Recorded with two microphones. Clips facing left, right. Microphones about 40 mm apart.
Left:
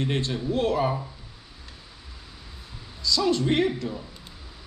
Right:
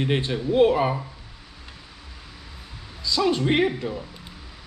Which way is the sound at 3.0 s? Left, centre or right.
Right.